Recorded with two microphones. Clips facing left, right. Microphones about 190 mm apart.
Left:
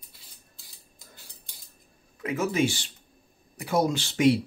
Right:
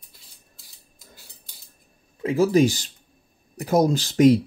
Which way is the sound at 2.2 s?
30° right (ahead or behind).